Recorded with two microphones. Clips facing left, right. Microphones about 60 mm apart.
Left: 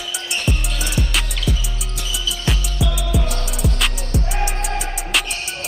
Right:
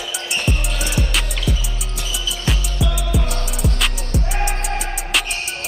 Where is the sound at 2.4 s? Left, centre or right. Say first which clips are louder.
Right 1 dB; centre.